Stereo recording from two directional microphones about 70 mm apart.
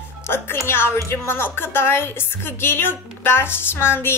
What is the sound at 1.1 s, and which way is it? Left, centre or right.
A woman's voice, left.